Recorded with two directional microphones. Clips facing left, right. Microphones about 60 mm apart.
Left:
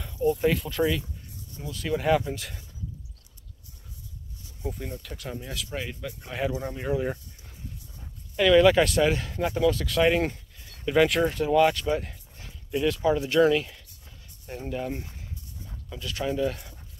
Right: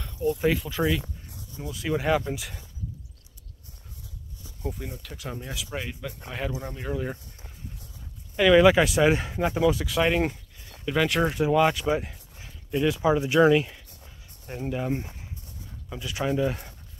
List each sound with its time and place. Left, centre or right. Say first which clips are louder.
0.0 s speech: left 1 dB; centre
4.6 s speech: even; centre
8.4 s speech: right 1 dB; centre
11.3 s speech: right 1 dB; centre